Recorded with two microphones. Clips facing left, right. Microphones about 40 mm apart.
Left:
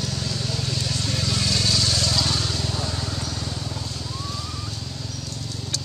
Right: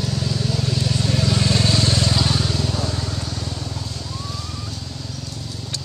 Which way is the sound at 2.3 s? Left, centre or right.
Centre.